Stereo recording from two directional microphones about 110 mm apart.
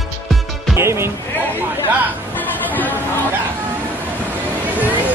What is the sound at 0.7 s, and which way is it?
Speech, 25° right (ahead or behind).